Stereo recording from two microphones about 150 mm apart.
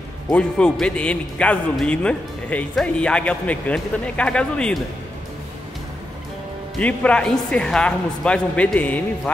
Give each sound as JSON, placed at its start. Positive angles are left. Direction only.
{"t": 0.3, "sound": "speech", "side_deg": 5}
{"t": 6.8, "sound": "speech", "side_deg": 10}